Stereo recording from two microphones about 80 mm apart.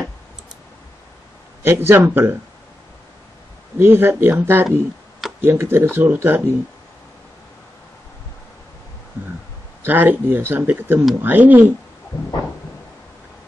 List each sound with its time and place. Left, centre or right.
1.6 s speech: right
3.7 s speech: right
9.8 s speech: right